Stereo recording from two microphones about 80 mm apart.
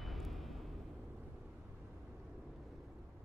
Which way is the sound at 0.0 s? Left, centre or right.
Centre.